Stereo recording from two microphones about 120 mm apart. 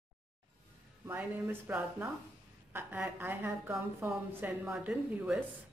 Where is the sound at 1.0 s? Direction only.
15° right (ahead or behind).